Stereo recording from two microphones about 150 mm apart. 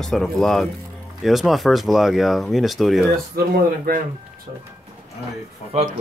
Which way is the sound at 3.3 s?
85° right.